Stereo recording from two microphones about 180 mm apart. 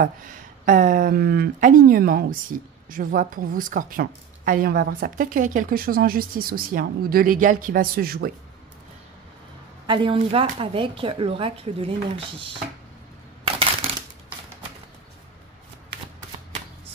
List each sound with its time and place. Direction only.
0.0 s speech: 50° right (ahead or behind)
9.8 s speech: 30° right (ahead or behind)